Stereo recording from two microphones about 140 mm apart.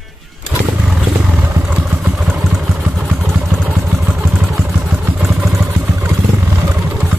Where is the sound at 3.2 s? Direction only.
20° right (ahead or behind).